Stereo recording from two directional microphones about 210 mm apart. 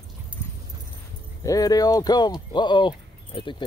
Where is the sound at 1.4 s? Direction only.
15° left (ahead or behind).